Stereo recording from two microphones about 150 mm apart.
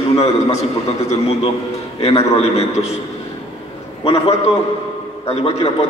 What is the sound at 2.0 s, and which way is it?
Speech, 45° left (ahead or behind).